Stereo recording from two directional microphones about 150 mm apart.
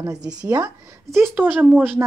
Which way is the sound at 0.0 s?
25° right (ahead or behind).